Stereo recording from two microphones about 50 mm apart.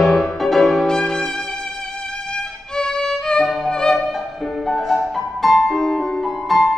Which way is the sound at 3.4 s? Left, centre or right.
Centre.